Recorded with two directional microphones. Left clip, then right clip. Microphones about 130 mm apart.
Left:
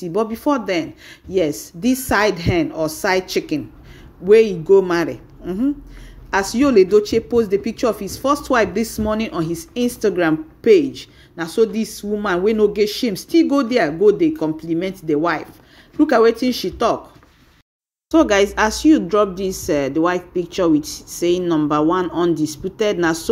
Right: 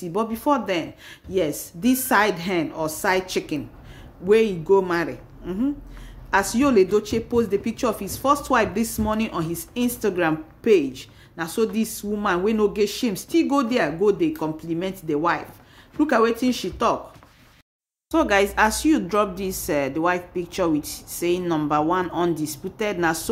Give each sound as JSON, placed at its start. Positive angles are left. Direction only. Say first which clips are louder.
{"t": 0.0, "sound": "a woman's voice", "louder": "left 4 dB", "side_deg": 20}
{"t": 6.3, "sound": "a woman's voice", "louder": "left 4 dB", "side_deg": 20}
{"t": 18.1, "sound": "speech", "louder": "left 5 dB", "side_deg": 20}